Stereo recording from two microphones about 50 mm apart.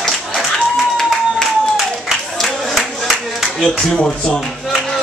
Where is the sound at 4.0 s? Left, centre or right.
Left.